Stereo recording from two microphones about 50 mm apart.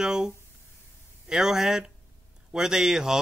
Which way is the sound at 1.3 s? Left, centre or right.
Centre.